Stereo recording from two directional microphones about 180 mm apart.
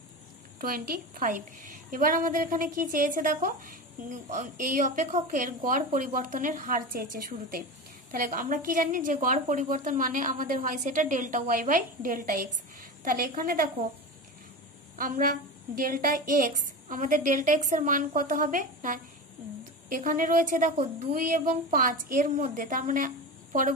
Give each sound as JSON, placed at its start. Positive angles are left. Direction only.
{"t": 0.6, "sound": "a woman's voice", "side_deg": -50}
{"t": 15.0, "sound": "a woman's voice", "side_deg": -50}